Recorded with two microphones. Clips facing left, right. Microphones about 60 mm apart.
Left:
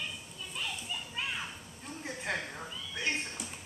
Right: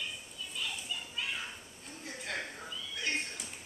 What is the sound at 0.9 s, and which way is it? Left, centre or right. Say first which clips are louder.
Children playing: left 1 dB; left.